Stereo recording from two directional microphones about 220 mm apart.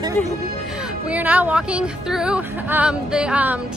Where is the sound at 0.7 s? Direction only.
5° right (ahead or behind).